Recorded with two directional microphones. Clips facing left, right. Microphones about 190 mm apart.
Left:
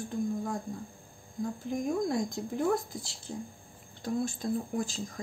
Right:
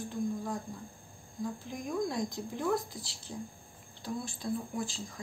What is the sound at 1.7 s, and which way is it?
Speech, 50° left (ahead or behind).